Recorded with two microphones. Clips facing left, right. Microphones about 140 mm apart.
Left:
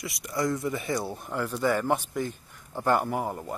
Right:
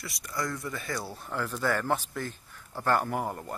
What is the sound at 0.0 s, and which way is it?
Speech, 20° left (ahead or behind).